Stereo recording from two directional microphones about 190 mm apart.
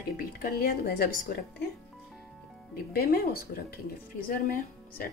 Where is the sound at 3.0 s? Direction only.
50° left (ahead or behind).